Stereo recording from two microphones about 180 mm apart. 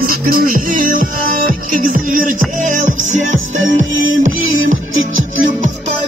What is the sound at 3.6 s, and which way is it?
Music, 90° right.